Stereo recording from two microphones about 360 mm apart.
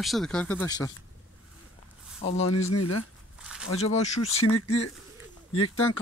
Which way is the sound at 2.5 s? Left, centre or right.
Left.